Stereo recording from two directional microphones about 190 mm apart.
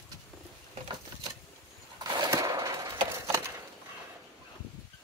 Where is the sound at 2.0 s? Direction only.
20° right (ahead or behind).